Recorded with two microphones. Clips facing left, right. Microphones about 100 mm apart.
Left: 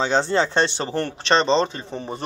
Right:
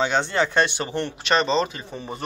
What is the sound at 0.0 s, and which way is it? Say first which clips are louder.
A man's voice: left 2 dB; 30° left (ahead or behind).